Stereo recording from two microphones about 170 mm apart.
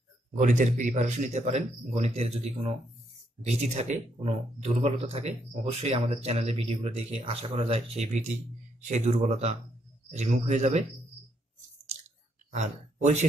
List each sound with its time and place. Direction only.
0.4 s speech: 45° right (ahead or behind)
3.7 s speech: 40° right (ahead or behind)
12.4 s speech: 45° right (ahead or behind)